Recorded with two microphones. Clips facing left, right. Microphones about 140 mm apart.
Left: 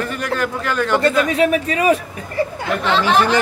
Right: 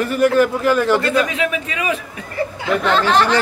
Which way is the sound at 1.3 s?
40° left (ahead or behind).